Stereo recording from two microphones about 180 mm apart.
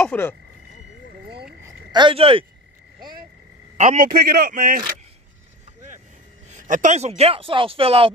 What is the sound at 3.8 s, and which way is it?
A man's voice, 45° right (ahead or behind).